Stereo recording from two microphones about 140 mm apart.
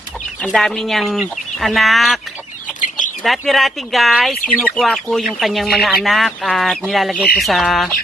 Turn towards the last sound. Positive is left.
turn(degrees=0)  # may be behind; listen again after turning